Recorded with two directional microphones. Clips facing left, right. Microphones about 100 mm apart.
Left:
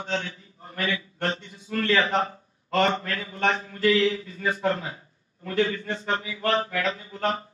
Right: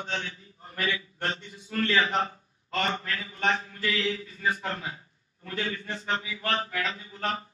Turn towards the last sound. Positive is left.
turn(degrees=30)  # may be behind; listen again after turning